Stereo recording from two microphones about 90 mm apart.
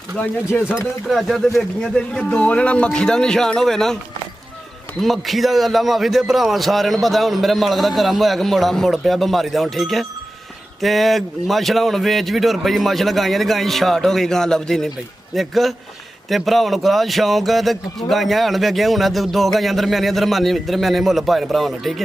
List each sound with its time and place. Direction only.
0.5 s speech: 25° left (ahead or behind)
1.0 s speech: centre (ahead or behind)
5.0 s a man's voice: centre (ahead or behind)